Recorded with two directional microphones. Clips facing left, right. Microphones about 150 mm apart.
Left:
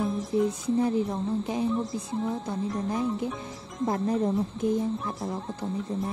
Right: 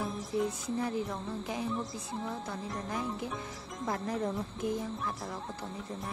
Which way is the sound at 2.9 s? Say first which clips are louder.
Left 5 dB; 20° left (ahead or behind).